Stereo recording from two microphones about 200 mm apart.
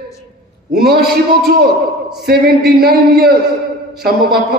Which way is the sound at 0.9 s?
50° right (ahead or behind).